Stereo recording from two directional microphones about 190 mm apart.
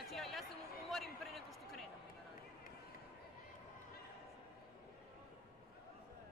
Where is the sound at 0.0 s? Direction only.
Centre (ahead or behind).